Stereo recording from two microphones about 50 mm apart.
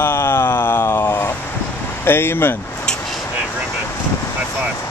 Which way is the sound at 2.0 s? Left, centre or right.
Left.